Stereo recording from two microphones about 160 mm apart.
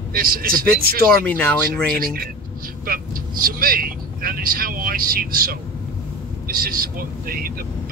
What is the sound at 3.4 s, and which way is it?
Speech, 65° right (ahead or behind).